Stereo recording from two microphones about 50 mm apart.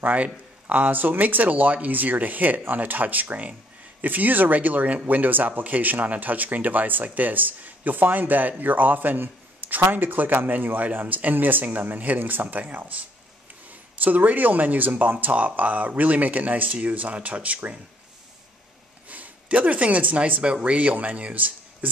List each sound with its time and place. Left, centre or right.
0.0 s speech: right
19.0 s speech: right